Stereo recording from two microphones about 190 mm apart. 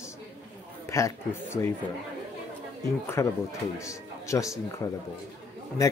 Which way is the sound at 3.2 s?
15° left (ahead or behind).